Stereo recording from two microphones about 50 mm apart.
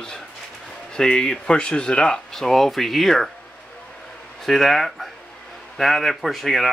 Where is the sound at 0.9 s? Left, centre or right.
Centre.